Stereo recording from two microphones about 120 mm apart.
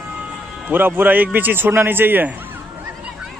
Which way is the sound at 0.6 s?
15° right (ahead or behind).